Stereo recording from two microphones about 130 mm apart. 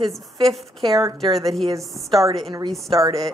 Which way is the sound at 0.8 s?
30° right (ahead or behind).